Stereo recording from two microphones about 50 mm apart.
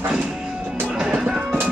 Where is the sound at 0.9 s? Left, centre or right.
Centre.